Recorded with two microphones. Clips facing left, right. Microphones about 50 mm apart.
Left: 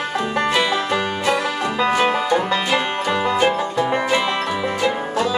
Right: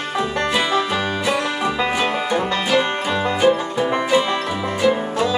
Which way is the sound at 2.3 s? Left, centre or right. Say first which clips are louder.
Left 1 dB; centre.